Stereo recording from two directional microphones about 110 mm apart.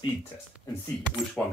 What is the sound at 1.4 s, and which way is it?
Speech, 20° left (ahead or behind).